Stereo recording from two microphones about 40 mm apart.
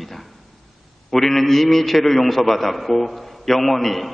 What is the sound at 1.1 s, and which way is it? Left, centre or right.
A man's voice, centre.